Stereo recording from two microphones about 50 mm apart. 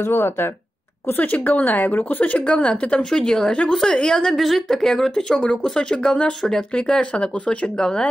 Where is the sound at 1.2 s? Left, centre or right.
Left.